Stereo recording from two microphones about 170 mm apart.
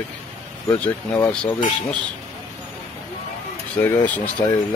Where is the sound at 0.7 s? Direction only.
10° left (ahead or behind).